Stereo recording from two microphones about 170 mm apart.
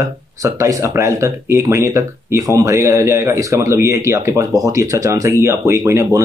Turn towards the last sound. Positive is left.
turn(degrees=-20)  # may be behind; listen again after turning